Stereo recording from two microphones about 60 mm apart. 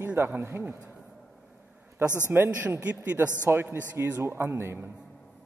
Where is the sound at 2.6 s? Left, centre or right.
Right.